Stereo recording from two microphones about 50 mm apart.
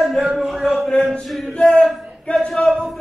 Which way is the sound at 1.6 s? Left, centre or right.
Centre.